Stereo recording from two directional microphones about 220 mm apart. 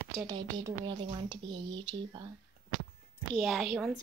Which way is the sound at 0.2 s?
15° right (ahead or behind).